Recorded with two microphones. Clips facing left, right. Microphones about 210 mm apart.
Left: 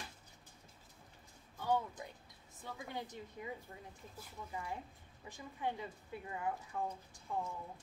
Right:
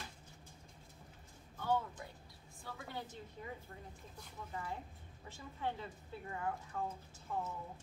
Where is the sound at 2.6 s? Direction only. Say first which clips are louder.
Left 2 dB; 15° left (ahead or behind).